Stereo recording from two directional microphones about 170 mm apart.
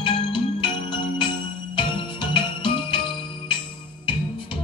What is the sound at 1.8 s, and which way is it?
Jingle bell, 30° left (ahead or behind).